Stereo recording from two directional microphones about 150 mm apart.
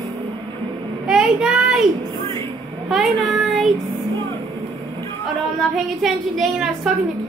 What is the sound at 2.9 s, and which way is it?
Child singing, centre (ahead or behind).